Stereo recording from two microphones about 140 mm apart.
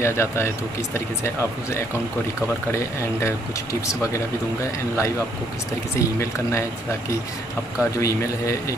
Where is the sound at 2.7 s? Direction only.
20° left (ahead or behind).